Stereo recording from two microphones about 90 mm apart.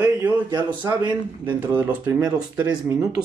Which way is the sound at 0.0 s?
50° right (ahead or behind).